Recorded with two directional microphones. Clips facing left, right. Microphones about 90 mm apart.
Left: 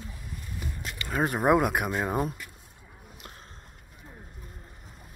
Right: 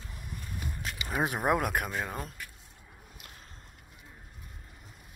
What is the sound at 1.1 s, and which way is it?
Speech, 5° right (ahead or behind).